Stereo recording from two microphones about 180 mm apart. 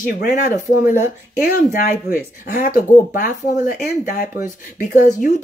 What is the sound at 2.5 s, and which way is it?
Speech, 50° left (ahead or behind).